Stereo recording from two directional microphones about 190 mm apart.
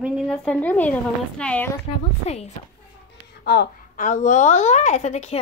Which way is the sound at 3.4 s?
55° left (ahead or behind).